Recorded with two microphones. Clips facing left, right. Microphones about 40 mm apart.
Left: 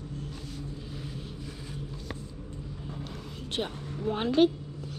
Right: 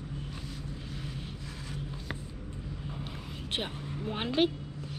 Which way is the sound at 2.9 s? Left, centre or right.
Centre.